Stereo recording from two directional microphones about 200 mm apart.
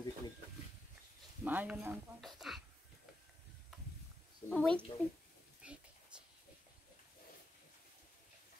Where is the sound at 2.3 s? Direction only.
Centre (ahead or behind).